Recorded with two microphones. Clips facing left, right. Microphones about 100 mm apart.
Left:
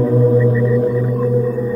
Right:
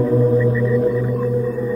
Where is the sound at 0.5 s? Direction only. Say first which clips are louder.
Left 2 dB; 15° left (ahead or behind).